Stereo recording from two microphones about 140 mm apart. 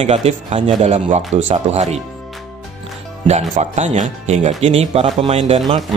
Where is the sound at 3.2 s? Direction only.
50° right (ahead or behind).